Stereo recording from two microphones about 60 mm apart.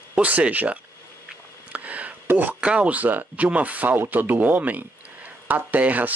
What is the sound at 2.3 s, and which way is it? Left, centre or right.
Speech, right.